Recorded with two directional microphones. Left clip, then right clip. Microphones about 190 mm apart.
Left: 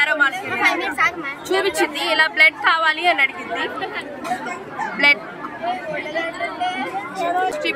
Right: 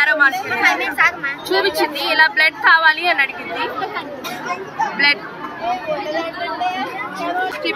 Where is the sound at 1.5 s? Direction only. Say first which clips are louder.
Right 1 dB; 10° left (ahead or behind).